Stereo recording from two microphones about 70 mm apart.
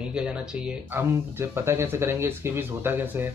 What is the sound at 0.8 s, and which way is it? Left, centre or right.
Speech, right.